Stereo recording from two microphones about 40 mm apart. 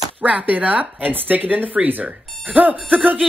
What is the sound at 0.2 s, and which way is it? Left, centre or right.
A woman's voice, right.